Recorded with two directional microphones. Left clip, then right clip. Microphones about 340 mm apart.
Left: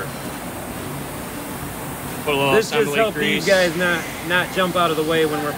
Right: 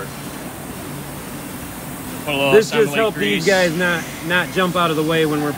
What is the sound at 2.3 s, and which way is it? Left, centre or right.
Speech, centre.